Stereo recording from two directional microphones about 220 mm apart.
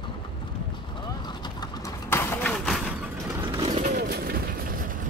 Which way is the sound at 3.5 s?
30° right (ahead or behind).